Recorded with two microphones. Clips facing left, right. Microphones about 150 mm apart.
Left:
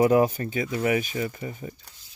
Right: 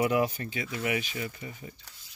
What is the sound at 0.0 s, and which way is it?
Speech, 40° left (ahead or behind).